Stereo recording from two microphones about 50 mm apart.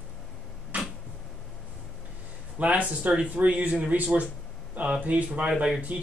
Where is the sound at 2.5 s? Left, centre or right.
Right.